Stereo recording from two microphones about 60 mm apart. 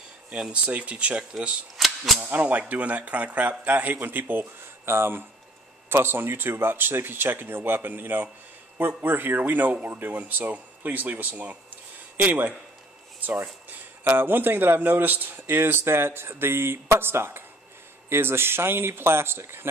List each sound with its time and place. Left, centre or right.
0.3 s speech: centre
14.0 s speech: right